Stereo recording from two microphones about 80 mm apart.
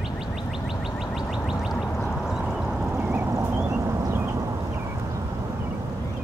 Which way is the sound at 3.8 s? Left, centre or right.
Right.